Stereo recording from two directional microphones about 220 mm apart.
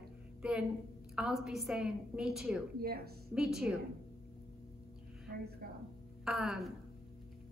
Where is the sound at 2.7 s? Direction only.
45° right (ahead or behind).